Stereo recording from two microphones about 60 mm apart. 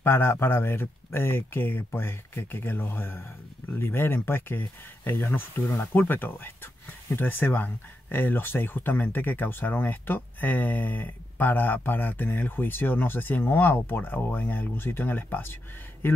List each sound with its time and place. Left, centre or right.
0.0 s speech: left